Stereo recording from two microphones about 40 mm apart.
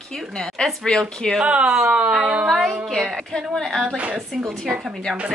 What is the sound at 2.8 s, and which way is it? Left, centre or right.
A woman's voice, centre.